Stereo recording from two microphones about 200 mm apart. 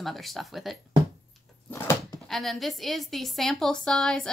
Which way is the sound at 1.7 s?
15° left (ahead or behind).